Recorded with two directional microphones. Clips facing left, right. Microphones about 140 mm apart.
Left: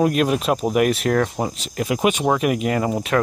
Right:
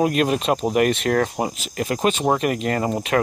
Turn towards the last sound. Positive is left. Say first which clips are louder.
# left 1 dB
turn(degrees=0)  # may be behind; listen again after turning